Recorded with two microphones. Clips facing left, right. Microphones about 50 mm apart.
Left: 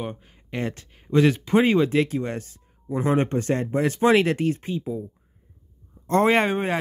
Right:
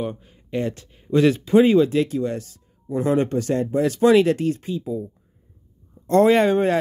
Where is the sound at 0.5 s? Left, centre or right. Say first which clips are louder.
Right 4 dB; left.